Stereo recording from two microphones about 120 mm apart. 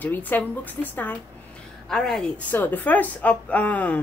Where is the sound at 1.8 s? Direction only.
5° left (ahead or behind).